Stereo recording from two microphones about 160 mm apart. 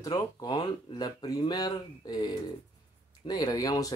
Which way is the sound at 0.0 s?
25° left (ahead or behind).